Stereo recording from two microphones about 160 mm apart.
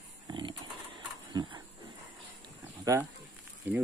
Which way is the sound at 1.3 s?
30° right (ahead or behind).